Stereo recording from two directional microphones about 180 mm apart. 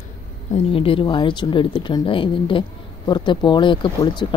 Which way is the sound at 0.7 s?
30° left (ahead or behind).